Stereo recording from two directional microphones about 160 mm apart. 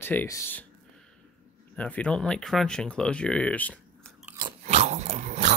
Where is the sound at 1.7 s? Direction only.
10° left (ahead or behind).